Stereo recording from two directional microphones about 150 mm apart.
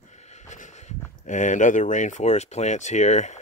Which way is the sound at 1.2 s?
55° left (ahead or behind).